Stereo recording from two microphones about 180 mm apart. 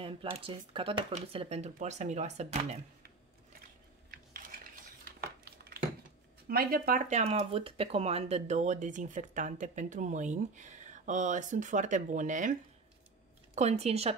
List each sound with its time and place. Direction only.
0.0 s speech: 30° right (ahead or behind)
6.4 s speech: 55° right (ahead or behind)
13.6 s speech: 35° right (ahead or behind)